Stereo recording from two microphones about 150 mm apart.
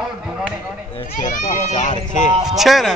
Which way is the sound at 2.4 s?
Centre (ahead or behind).